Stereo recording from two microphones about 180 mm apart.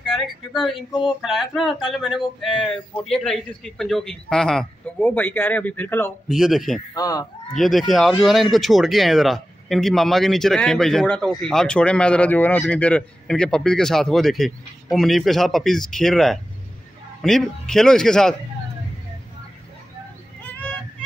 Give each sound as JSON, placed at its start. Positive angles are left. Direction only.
{"t": 0.0, "sound": "speech", "side_deg": 0}
{"t": 0.7, "sound": "a sound", "side_deg": 25}
{"t": 1.2, "sound": "speech", "side_deg": 0}
{"t": 6.2, "sound": "speech", "side_deg": 0}
{"t": 6.9, "sound": "a sound", "side_deg": 20}
{"t": 7.5, "sound": "speech", "side_deg": 0}